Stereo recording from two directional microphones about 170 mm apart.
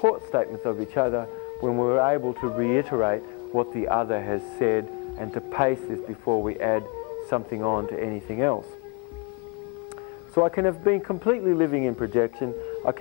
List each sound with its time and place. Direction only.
0.0 s speech: 35° right (ahead or behind)
10.3 s speech: 35° right (ahead or behind)